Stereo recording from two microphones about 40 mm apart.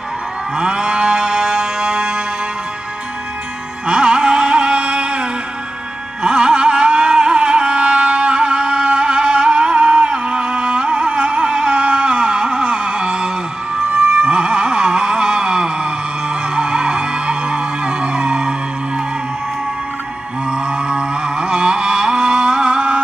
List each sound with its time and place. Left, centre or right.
0.6 s moo: right
3.8 s music: right
20.4 s a sound: right